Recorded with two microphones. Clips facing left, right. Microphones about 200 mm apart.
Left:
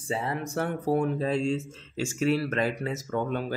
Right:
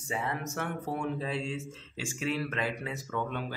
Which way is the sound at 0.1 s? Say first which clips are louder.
Left 4 dB; 30° left (ahead or behind).